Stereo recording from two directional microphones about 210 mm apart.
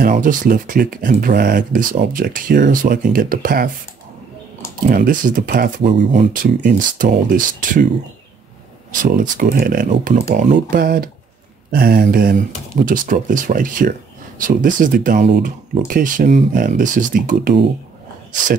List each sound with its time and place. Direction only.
0.0 s speech: 40° right (ahead or behind)
4.8 s speech: 40° right (ahead or behind)
9.0 s speech: 40° right (ahead or behind)